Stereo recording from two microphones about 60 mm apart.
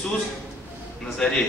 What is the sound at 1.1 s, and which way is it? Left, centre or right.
Speech, centre.